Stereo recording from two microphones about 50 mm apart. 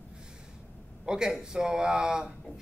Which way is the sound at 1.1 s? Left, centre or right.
Centre.